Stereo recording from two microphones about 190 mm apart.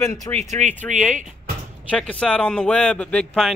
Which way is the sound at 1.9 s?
5° left (ahead or behind).